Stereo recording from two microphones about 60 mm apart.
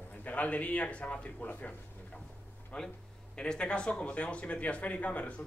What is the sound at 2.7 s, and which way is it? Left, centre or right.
A man's voice, centre.